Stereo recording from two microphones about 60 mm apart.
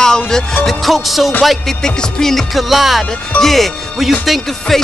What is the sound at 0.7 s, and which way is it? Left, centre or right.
Music, centre.